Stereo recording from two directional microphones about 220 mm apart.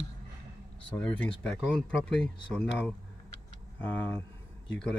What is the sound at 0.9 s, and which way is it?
Speech, 5° left (ahead or behind).